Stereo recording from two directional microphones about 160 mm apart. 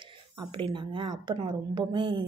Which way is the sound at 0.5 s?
30° right (ahead or behind).